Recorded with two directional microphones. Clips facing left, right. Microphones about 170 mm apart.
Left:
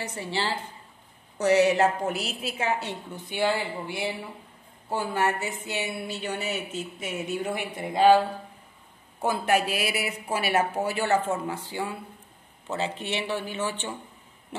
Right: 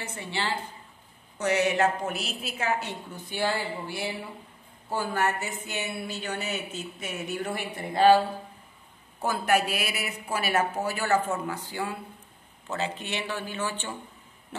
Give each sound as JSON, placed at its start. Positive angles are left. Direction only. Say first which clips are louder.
{"t": 0.0, "sound": "a woman's voice", "louder": "left 3 dB", "side_deg": 35}
{"t": 3.3, "sound": "speech", "louder": "left 3 dB", "side_deg": 20}
{"t": 7.4, "sound": "a woman's voice", "louder": "left 2 dB", "side_deg": 15}
{"t": 9.2, "sound": "speech", "louder": "left 1 dB", "side_deg": 25}